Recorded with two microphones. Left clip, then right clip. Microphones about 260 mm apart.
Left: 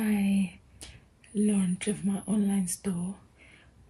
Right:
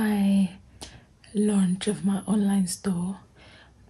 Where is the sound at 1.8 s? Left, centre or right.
Centre.